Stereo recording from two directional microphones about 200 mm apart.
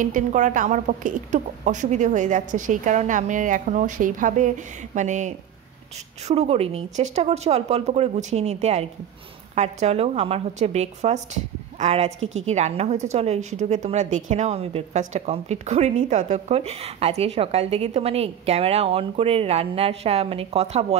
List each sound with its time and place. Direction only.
0.0 s a woman's voice: 40° right (ahead or behind)